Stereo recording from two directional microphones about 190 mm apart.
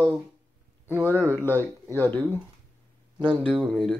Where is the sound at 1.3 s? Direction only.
10° left (ahead or behind).